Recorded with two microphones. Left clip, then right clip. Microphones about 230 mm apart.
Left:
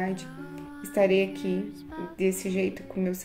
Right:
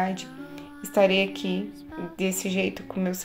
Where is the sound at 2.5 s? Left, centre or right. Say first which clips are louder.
Right 2 dB; right.